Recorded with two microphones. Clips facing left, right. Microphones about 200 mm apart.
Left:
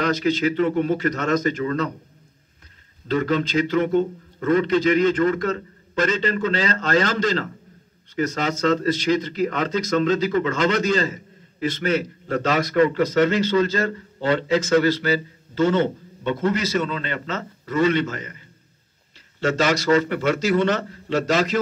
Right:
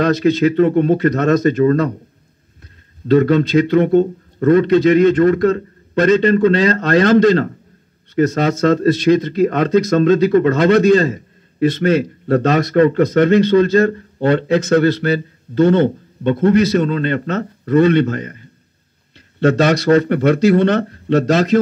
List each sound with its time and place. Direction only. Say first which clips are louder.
0.0 s speech: right 7 dB; 55° right (ahead or behind)
3.1 s speech: right 9 dB; 60° right (ahead or behind)
9.1 s speech: right 8 dB; 45° right (ahead or behind)
9.5 s speech: right 8 dB; 60° right (ahead or behind)
12.3 s speech: right 7 dB; 60° right (ahead or behind)
19.4 s speech: right 7 dB; 60° right (ahead or behind)